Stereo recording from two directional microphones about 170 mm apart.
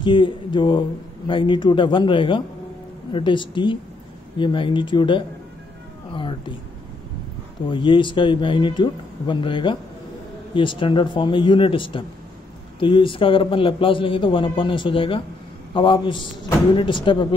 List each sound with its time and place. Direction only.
0.0 s speech: 30° left (ahead or behind)
7.6 s a man's voice: 30° left (ahead or behind)